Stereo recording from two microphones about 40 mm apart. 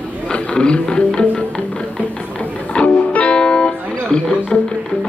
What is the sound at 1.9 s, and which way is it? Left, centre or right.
Music, left.